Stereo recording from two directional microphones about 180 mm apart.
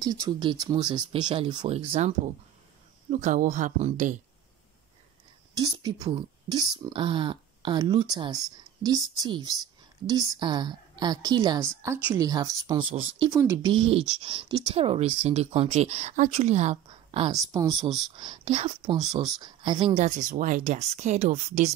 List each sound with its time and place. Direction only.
0.0 s speech: 20° right (ahead or behind)
3.1 s speech: 45° right (ahead or behind)
5.5 s speech: 20° right (ahead or behind)
17.3 s speech: 20° right (ahead or behind)
20.0 s speech: 45° right (ahead or behind)